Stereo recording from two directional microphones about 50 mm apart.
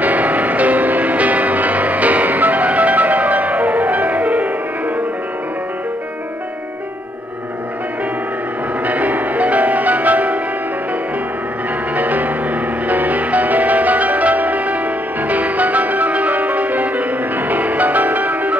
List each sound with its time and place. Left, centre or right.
0.0 s music: right
8.8 s music: right
11.9 s music: right